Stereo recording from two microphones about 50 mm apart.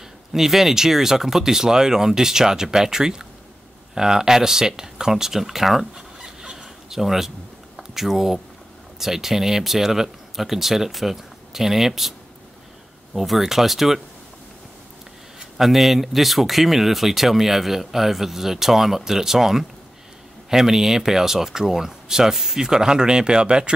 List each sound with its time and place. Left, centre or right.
0.3 s speech: centre
6.2 s a sound: centre
9.0 s speech: centre
13.1 s speech: centre
15.5 s speech: centre